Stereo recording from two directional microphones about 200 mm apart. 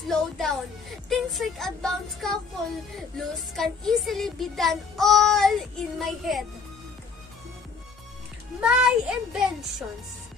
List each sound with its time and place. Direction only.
0.1 s a woman's voice: centre (ahead or behind)
8.5 s speech: 5° right (ahead or behind)